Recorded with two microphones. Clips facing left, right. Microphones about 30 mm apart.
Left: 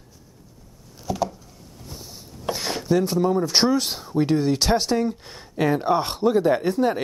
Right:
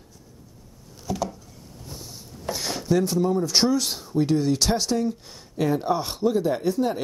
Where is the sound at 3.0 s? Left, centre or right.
Centre.